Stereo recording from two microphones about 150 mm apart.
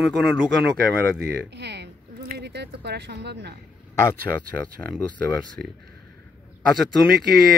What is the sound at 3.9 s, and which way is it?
Speech, 15° left (ahead or behind).